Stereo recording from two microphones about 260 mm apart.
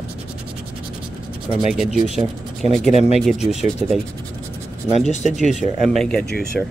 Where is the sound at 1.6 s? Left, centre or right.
Centre.